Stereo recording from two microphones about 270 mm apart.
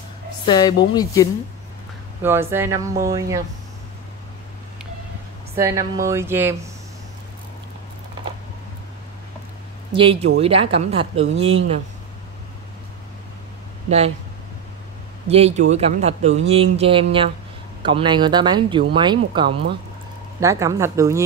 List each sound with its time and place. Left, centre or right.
0.5 s speech: centre
2.2 s speech: centre
5.6 s speech: centre
9.9 s speech: centre
13.8 s speech: right
15.2 s speech: right